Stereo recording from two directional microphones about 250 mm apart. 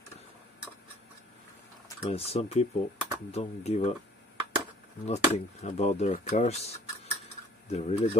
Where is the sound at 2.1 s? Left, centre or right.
Left.